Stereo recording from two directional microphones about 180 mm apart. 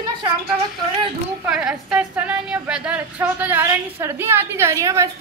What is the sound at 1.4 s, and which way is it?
A woman's voice, 5° right (ahead or behind).